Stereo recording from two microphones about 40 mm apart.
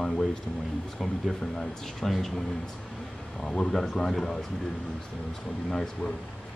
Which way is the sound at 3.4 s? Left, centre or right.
Centre.